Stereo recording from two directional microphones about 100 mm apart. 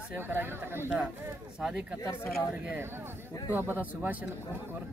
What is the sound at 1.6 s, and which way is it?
Speech, 5° right (ahead or behind).